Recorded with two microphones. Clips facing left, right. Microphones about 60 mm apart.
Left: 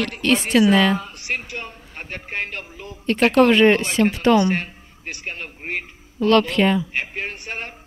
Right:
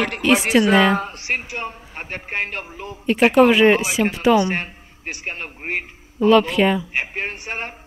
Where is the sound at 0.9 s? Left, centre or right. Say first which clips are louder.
Right 3 dB; right.